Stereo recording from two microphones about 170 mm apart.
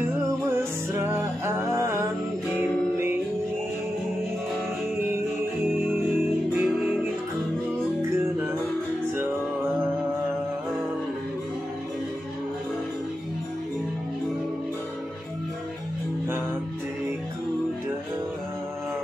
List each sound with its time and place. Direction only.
0.9 s music: 15° right (ahead or behind)
5.1 s music: 15° right (ahead or behind)